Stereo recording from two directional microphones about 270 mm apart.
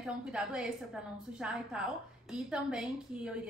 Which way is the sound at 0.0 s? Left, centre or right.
Centre.